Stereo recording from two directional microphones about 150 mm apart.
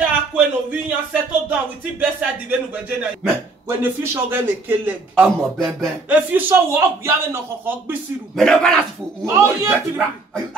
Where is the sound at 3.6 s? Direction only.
15° right (ahead or behind).